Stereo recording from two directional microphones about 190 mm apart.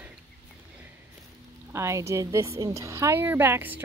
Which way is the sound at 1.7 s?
15° right (ahead or behind).